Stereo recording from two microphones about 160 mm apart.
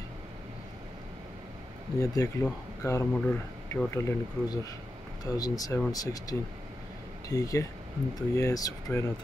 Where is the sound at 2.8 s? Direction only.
20° left (ahead or behind).